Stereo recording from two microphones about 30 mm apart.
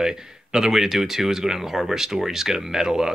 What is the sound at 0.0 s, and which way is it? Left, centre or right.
Speech, right.